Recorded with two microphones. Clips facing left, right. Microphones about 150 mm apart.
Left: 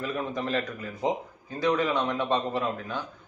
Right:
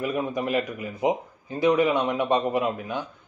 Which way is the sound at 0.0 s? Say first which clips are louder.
Right 4 dB; 15° right (ahead or behind).